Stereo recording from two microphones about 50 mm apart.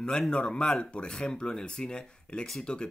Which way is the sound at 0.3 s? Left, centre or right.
Centre.